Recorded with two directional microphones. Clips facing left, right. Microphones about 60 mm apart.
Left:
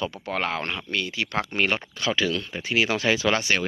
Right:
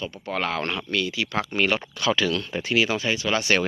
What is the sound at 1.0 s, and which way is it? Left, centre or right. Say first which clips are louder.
Speech: right 1 dB; left.